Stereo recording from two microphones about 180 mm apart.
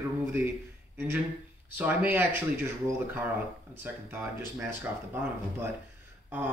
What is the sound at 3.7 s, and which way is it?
Speech, 10° right (ahead or behind).